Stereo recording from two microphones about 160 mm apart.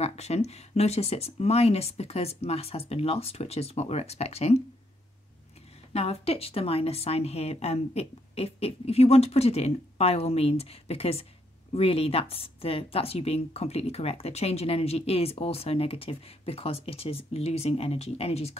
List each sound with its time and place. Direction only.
0.0 s speech: 40° left (ahead or behind)
5.9 s speech: 40° left (ahead or behind)